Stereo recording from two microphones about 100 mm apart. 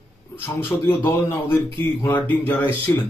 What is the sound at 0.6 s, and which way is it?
Speech, 25° left (ahead or behind).